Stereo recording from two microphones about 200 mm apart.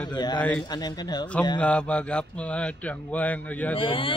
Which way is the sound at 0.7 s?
20° left (ahead or behind).